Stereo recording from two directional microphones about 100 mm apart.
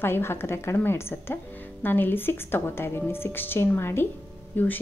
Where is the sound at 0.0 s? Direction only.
25° left (ahead or behind).